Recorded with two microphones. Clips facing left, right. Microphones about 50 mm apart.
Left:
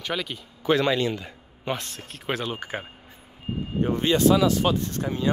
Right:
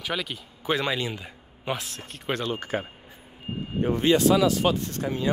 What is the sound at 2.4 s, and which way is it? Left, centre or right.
Speech, centre.